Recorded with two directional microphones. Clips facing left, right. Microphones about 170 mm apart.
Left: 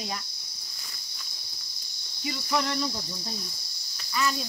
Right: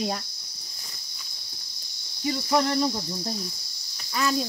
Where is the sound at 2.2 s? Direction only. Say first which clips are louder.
Right 5 dB; 40° right (ahead or behind).